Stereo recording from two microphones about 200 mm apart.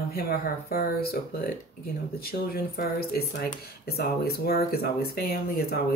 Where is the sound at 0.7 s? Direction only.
50° left (ahead or behind).